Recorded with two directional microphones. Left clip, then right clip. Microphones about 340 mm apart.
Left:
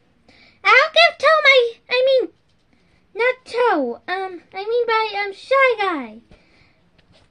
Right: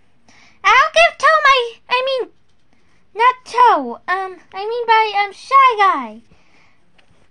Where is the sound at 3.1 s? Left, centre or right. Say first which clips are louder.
Right 6 dB; right.